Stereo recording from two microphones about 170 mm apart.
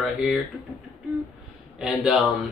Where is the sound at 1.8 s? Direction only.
5° right (ahead or behind).